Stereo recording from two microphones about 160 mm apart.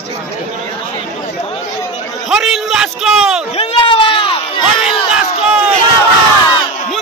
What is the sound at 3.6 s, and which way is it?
Crowd, 35° left (ahead or behind).